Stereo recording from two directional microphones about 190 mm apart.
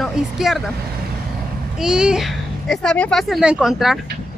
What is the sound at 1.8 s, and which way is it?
A woman's voice, 5° right (ahead or behind).